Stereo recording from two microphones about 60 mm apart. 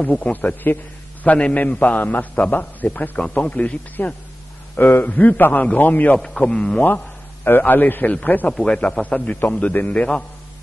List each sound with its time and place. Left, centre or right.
0.0 s a man's voice: centre
0.3 s a man's voice: left
6.1 s a man's voice: centre
7.4 s a man's voice: left
8.5 s a man's voice: centre
9.0 s a man's voice: centre